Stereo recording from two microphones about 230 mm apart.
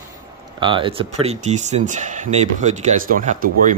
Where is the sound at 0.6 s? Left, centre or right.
Right.